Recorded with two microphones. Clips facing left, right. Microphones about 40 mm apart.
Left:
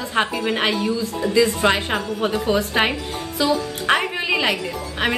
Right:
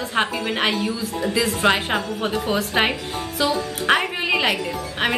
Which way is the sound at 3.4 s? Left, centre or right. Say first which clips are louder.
Left 2 dB; centre.